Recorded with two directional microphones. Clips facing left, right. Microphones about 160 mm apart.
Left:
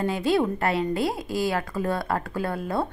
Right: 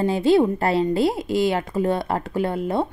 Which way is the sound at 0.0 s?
25° right (ahead or behind).